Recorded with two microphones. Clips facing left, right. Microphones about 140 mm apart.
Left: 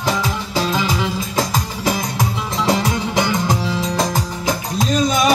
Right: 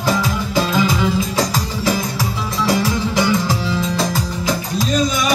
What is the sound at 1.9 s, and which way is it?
Music, 20° left (ahead or behind).